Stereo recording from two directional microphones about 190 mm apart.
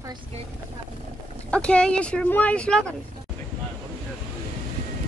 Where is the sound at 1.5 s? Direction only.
5° left (ahead or behind).